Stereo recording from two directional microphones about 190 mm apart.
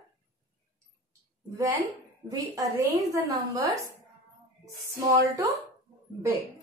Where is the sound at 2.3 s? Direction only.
15° right (ahead or behind).